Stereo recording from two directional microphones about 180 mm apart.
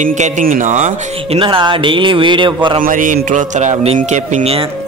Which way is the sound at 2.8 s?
50° right (ahead or behind).